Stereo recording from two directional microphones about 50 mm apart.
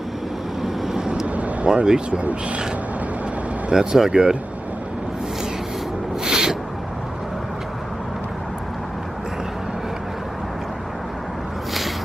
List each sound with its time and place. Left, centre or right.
0.6 s vehicle: centre
1.2 s vehicle: right
1.9 s speech: right
3.7 s speech: centre
6.2 s owl: centre